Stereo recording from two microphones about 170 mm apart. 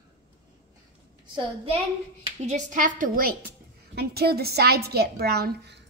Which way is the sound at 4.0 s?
70° right (ahead or behind).